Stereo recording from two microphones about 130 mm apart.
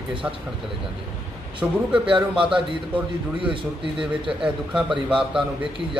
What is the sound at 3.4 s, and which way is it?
Speech, 40° right (ahead or behind).